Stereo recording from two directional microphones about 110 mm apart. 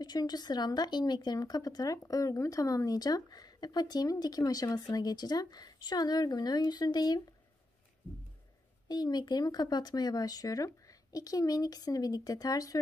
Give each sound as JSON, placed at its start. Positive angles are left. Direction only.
{"t": 0.0, "sound": "speech", "side_deg": 40}
{"t": 8.8, "sound": "speech", "side_deg": 40}